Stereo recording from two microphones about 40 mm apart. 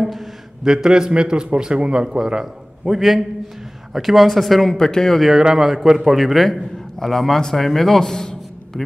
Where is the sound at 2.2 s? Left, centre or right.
Centre.